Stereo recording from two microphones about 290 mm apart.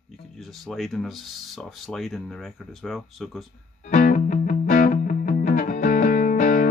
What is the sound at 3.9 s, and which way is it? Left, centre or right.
Music, left.